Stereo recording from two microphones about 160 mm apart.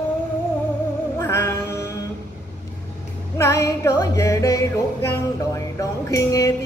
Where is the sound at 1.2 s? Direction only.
15° left (ahead or behind).